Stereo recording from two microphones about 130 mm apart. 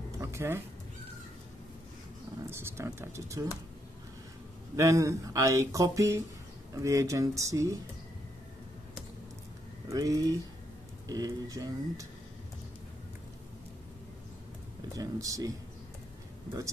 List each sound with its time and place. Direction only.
0.2 s a sound: 20° right (ahead or behind)
2.4 s speech: 20° right (ahead or behind)
4.7 s speech: 25° right (ahead or behind)
9.8 s speech: 25° right (ahead or behind)
15.0 s speech: 25° right (ahead or behind)